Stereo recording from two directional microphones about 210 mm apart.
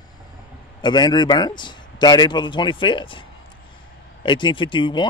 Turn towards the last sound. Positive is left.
turn(degrees=20)  # may be behind; listen again after turning